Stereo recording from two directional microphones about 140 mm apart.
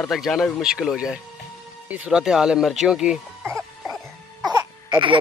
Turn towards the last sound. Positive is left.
turn(degrees=-20)  # may be behind; listen again after turning